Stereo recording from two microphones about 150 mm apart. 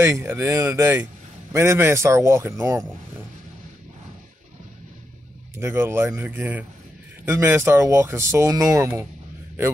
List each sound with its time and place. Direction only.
0.0 s a man's voice: 15° right (ahead or behind)
5.6 s speech: 15° right (ahead or behind)